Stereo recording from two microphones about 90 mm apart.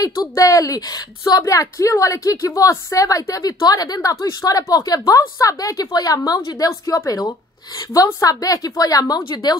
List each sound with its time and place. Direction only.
0.0 s a woman's voice: 40° left (ahead or behind)